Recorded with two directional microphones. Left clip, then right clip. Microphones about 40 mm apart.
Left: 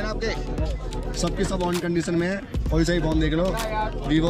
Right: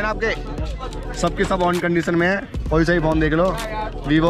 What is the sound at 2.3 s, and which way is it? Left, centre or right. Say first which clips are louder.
Speech: right 7 dB; left.